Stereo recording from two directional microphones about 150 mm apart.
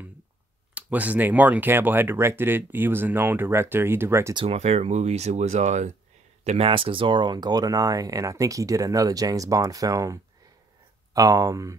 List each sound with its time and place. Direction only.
0.7 s speech: 10° right (ahead or behind)
4.5 s speech: 45° right (ahead or behind); by 11.7 s 20° right (ahead or behind)